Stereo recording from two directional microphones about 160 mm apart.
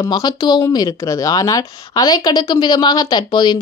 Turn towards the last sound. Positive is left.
turn(degrees=30)  # may be behind; listen again after turning